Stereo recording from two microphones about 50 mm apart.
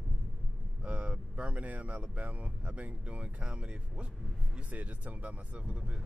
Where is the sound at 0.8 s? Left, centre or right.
Right.